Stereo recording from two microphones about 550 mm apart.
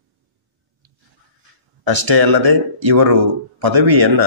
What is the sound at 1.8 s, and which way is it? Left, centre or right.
Speech, right.